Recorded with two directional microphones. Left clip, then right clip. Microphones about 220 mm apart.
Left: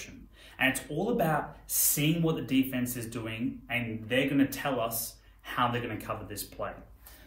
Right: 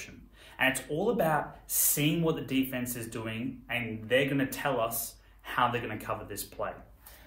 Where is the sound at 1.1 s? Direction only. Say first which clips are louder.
Left 2 dB; 15° right (ahead or behind).